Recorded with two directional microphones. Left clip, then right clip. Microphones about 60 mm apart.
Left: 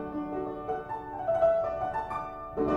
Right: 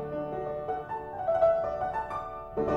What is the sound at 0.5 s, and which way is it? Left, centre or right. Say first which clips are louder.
Music: right 1 dB; centre.